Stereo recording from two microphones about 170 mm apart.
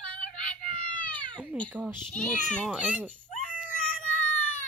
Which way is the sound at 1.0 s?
10° left (ahead or behind).